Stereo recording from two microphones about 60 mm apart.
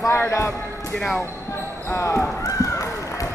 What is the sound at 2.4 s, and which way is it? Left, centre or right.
Run, left.